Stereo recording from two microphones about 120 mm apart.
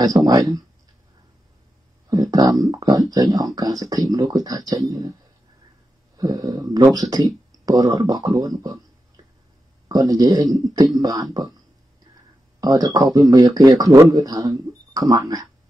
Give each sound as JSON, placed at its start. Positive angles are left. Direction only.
{"t": 0.0, "sound": "speech", "side_deg": -30}
{"t": 2.0, "sound": "speech", "side_deg": -30}
{"t": 6.1, "sound": "speech", "side_deg": -30}
{"t": 9.8, "sound": "speech", "side_deg": -30}
{"t": 12.5, "sound": "speech", "side_deg": -30}